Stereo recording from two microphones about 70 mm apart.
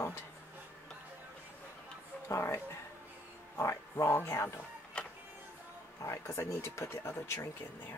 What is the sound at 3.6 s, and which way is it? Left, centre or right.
Speech, left.